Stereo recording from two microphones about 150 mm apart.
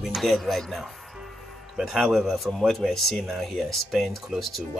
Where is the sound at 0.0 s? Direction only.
Centre (ahead or behind).